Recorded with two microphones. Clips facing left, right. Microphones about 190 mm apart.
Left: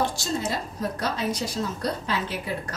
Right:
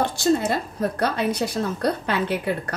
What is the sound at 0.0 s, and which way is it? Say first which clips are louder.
A woman's voice: right 6 dB; 60° right (ahead or behind).